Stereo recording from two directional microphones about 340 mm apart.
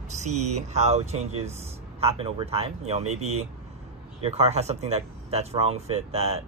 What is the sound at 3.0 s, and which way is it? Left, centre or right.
Speech, right.